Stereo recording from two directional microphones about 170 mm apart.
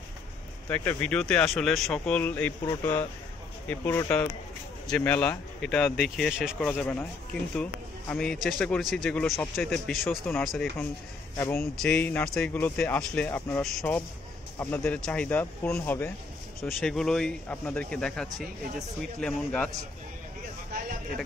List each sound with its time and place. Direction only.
0.7 s speech: 10° left (ahead or behind)
5.9 s a man's voice: centre (ahead or behind)
6.7 s speech: 10° left (ahead or behind)
8.1 s a man's voice: 5° left (ahead or behind)
11.3 s speech: 15° left (ahead or behind)
11.7 s speech: 5° left (ahead or behind)
14.6 s a man's voice: 10° left (ahead or behind)